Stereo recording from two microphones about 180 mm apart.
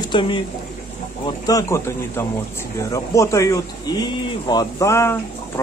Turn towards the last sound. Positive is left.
turn(degrees=15)  # may be behind; listen again after turning